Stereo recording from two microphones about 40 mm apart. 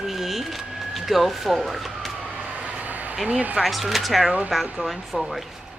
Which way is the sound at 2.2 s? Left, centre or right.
Right.